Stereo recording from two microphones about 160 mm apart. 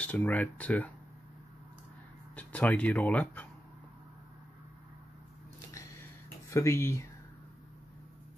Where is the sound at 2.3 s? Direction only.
10° left (ahead or behind).